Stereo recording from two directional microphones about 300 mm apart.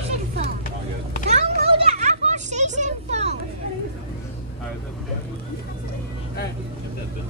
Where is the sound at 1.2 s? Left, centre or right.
Right.